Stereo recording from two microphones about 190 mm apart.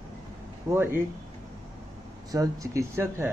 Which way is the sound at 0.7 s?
10° right (ahead or behind).